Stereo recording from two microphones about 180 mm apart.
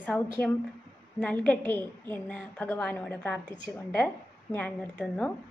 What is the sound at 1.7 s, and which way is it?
Speech, 10° left (ahead or behind).